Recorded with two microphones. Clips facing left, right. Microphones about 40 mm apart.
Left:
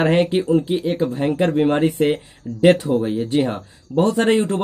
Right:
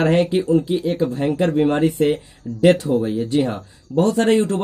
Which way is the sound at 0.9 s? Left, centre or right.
Centre.